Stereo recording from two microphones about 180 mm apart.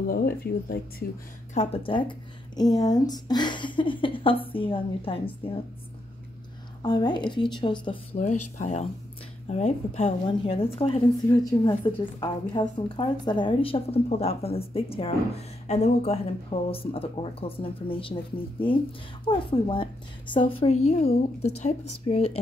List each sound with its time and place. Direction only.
0.1 s speech: 55° left (ahead or behind)
1.5 s speech: 35° left (ahead or behind)
6.8 s speech: 25° left (ahead or behind)
8.2 s a woman's voice: 45° left (ahead or behind)